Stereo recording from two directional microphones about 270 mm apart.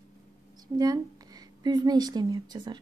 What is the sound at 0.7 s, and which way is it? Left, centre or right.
A woman's voice, centre.